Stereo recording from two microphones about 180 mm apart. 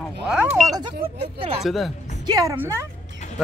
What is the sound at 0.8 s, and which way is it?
Speech, 30° right (ahead or behind).